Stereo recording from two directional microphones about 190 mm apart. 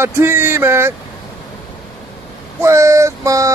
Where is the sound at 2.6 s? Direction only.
15° right (ahead or behind).